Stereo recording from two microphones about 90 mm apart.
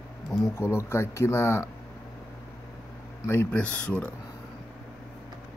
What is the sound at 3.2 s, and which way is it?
Speech, 25° left (ahead or behind).